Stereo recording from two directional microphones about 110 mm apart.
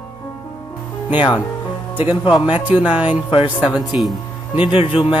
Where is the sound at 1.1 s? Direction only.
45° left (ahead or behind).